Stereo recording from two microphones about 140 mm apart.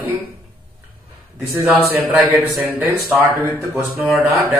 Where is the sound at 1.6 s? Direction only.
5° right (ahead or behind).